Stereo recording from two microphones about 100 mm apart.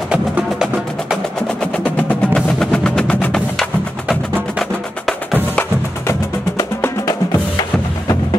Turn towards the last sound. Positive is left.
turn(degrees=30)  # may be behind; listen again after turning